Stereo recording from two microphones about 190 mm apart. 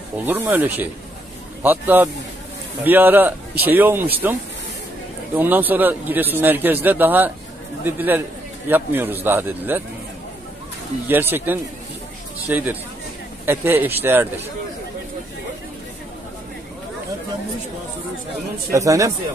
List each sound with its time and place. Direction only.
0.2 s a man's voice: 10° right (ahead or behind)
11.1 s a man's voice: 10° right (ahead or behind)
18.7 s a man's voice: 15° right (ahead or behind)